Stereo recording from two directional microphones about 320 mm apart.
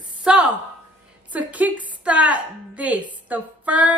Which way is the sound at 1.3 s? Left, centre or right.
Centre.